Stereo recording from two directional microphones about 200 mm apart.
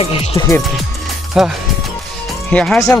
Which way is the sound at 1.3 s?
Centre (ahead or behind).